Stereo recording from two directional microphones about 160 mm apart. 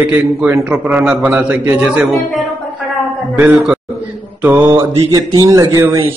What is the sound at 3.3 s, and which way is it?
A man's voice, 5° right (ahead or behind).